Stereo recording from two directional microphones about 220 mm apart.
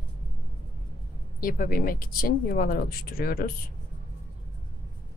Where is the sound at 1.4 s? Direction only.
40° left (ahead or behind).